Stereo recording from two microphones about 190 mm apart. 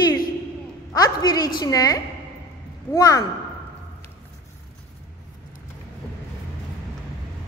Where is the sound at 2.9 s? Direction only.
20° left (ahead or behind).